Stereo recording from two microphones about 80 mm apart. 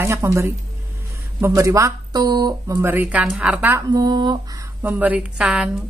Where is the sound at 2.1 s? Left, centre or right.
Right.